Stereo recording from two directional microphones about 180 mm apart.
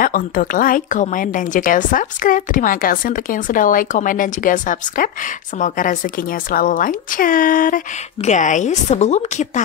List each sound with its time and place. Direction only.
0.0 s a woman's voice: 50° left (ahead or behind)